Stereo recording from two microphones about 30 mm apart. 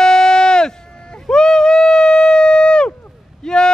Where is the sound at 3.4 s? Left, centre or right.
Left.